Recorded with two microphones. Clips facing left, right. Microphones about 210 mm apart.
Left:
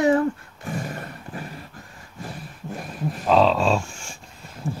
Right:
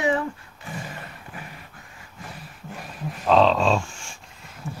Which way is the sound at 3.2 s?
5° left (ahead or behind).